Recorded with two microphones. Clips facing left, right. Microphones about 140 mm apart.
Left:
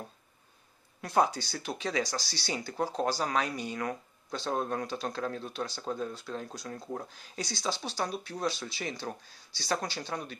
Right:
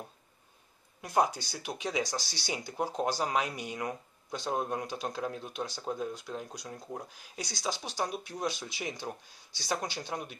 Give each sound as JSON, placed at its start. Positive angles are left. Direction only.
{"t": 1.0, "sound": "speech", "side_deg": -10}